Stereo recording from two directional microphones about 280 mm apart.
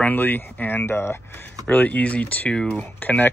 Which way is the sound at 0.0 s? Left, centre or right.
Centre.